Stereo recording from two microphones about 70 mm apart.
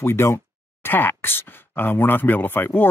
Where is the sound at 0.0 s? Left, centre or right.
Left.